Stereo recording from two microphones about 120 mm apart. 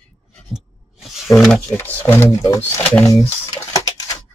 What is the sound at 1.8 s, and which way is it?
Speech, 15° left (ahead or behind).